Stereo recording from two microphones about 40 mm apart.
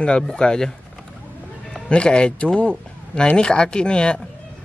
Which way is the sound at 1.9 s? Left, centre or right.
Left.